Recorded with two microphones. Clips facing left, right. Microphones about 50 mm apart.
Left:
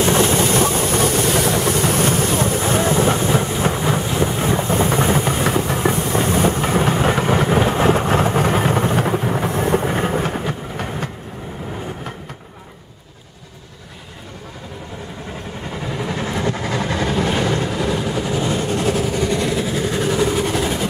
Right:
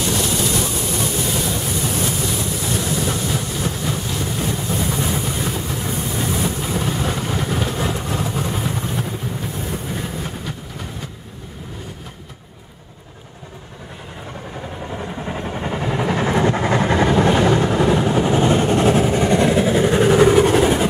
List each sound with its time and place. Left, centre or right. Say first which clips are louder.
0.0 s vehicle: left 5 dB; left
3.7 s boat: left 5 dB; left
4.1 s vehicle: left 5 dB; left
6.1 s train: left 5 dB; left
7.4 s vehicle: left 7 dB; left
15.2 s vehicle: right 5 dB; right